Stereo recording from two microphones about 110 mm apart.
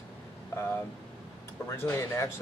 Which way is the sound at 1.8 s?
25° left (ahead or behind).